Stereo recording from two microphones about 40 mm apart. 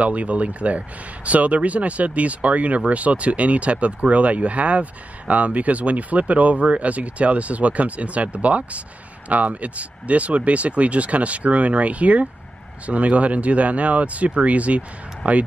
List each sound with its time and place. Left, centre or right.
0.0 s speech: right